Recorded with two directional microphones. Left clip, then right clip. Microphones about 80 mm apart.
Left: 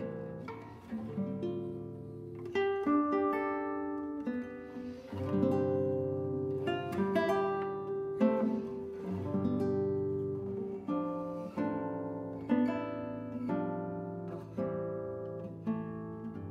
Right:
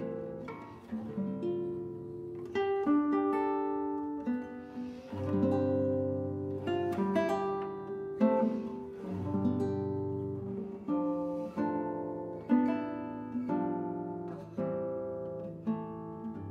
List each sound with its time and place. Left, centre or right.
1.1 s music: left
9.3 s guitar: left
10.9 s music: left
11.1 s music: centre
11.5 s music: left
14.6 s guitar: left